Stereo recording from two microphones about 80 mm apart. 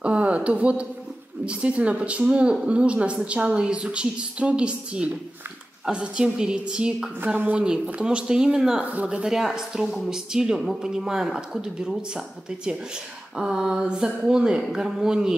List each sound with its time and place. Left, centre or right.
0.0 s speech: centre
7.3 s speech: right
7.6 s speech: centre